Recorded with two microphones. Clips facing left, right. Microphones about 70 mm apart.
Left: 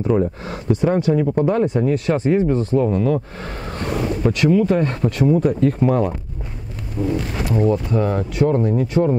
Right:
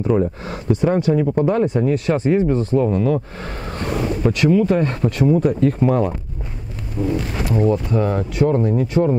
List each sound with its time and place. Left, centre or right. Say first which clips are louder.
0.1 s speech: even; right